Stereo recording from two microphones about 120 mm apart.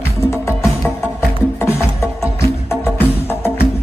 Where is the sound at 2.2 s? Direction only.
20° left (ahead or behind).